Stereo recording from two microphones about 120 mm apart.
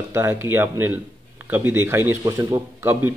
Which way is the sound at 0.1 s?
20° right (ahead or behind).